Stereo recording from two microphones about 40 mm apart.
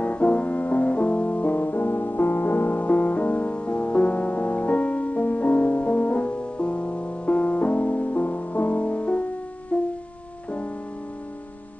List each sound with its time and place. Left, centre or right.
0.0 s music: left